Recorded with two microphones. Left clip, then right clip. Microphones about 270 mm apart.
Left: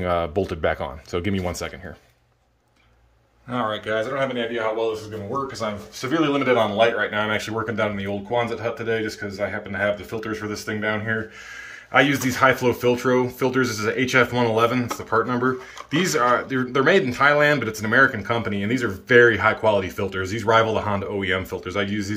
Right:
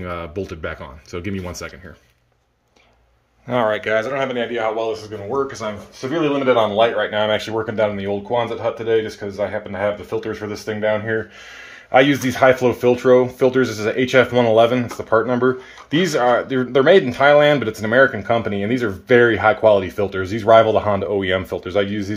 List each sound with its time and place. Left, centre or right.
0.0 s speech: centre
4.0 s speech: centre
6.5 s speech: right